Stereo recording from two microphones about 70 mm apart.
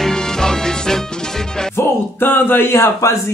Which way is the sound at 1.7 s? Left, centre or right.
Left.